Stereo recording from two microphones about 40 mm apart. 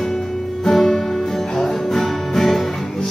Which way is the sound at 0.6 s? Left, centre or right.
Centre.